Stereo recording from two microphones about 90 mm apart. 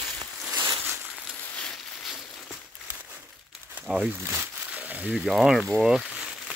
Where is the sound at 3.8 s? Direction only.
10° right (ahead or behind).